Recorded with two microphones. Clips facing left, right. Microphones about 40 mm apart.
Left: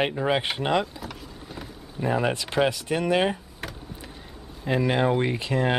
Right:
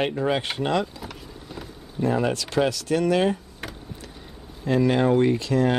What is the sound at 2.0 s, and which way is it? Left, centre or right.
Speech, centre.